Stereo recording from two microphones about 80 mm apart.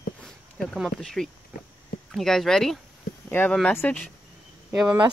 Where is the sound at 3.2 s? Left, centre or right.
Left.